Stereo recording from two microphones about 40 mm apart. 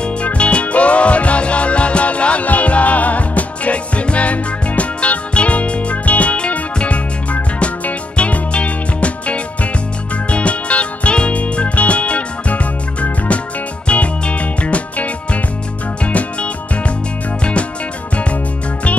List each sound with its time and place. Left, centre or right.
0.0 s music: left
13.8 s music: left
16.1 s music: left